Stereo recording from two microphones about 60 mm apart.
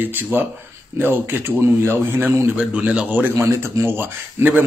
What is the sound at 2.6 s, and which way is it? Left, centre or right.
Speech, right.